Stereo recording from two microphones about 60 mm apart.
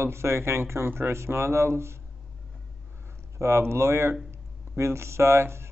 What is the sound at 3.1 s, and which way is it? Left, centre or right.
Speech, right.